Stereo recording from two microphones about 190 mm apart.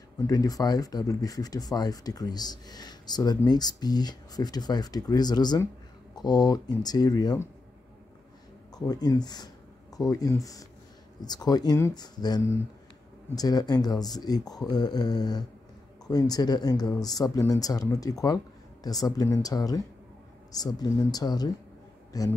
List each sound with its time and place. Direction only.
0.3 s speech: 20° left (ahead or behind)
8.7 s speech: 20° left (ahead or behind)